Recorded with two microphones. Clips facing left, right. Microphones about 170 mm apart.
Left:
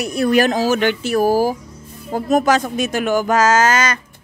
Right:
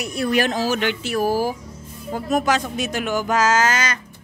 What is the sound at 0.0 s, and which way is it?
Speech, 45° left (ahead or behind).